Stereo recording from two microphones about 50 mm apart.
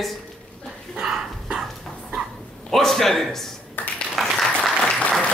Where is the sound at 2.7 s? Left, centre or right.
Centre.